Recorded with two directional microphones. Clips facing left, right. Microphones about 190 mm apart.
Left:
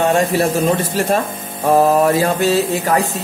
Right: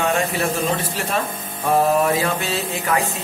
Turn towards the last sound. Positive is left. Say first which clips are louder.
# left 6 dB
turn(degrees=40)  # may be behind; listen again after turning